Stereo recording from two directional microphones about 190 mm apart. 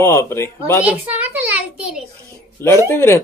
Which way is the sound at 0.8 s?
10° right (ahead or behind).